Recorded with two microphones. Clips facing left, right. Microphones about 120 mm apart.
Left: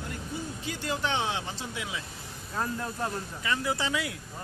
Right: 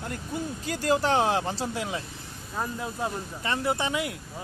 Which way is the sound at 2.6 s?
10° right (ahead or behind).